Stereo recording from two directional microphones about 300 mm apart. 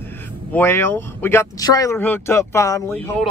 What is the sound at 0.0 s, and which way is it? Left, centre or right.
Speech, centre.